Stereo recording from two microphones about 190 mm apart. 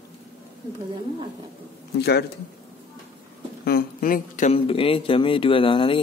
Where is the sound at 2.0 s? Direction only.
60° left (ahead or behind).